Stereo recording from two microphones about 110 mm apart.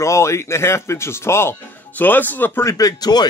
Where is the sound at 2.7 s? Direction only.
35° left (ahead or behind).